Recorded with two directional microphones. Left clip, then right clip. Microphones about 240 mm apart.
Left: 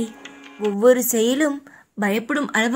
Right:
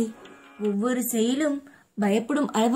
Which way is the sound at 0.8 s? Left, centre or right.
Left.